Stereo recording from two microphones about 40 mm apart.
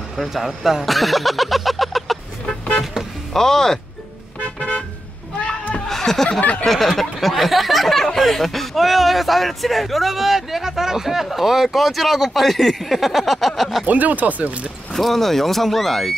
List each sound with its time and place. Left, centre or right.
0.2 s speech: centre
2.8 s music: centre
3.3 s speech: centre
5.9 s a sound: centre
6.6 s speech: centre
13.8 s speech: right
15.0 s speech: centre